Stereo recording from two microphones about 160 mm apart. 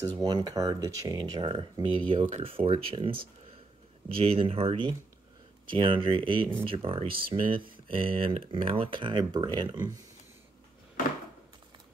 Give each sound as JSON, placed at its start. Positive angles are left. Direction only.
{"t": 0.2, "sound": "speech", "side_deg": -25}